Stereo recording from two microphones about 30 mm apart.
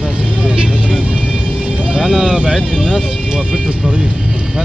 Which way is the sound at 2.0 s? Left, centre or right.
Centre.